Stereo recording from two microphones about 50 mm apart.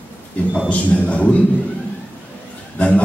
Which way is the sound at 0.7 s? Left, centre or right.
Left.